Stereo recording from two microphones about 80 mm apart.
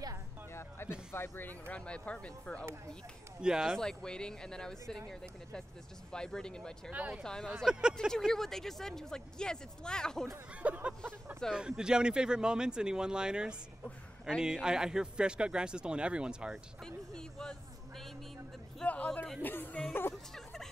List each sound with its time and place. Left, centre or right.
0.6 s music: left
1.1 s speech: left; by 2.6 s centre
3.3 s speech: centre
3.7 s speech: centre
6.9 s speech: centre
7.6 s speech: centre
8.3 s speech: centre
10.6 s speech: centre
16.8 s speech: centre; by 20.2 s left